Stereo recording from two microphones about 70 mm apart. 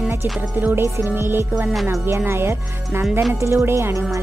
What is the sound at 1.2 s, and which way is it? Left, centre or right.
Speech, right.